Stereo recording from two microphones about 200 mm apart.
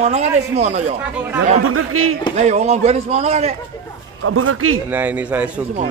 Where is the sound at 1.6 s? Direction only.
90° right.